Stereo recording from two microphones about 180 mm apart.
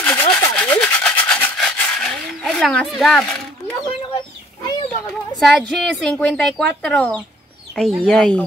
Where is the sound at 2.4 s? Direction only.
Centre (ahead or behind).